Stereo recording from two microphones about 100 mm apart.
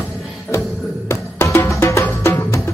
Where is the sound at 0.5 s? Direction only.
30° left (ahead or behind).